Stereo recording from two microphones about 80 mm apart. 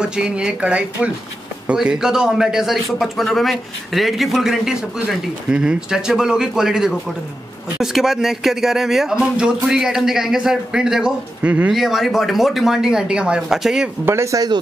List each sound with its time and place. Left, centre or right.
0.0 s a man's voice: centre
14.0 s speech: right